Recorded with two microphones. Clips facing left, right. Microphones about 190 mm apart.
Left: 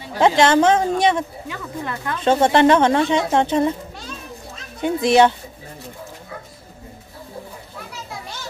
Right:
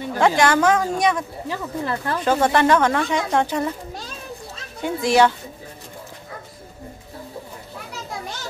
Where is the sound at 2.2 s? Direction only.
25° left (ahead or behind).